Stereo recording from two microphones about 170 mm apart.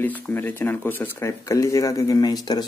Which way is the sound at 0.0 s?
10° left (ahead or behind).